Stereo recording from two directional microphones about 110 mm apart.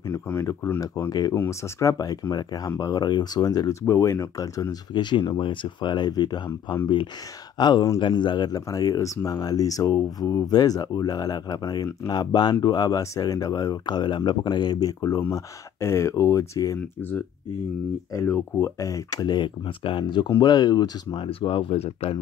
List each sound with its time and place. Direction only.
0.1 s speech: 25° left (ahead or behind)
1.3 s speech: 20° left (ahead or behind)
18.1 s speech: 25° left (ahead or behind)
21.3 s speech: 55° left (ahead or behind)